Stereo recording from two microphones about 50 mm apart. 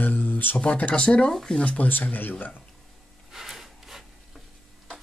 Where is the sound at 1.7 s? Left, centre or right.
Left.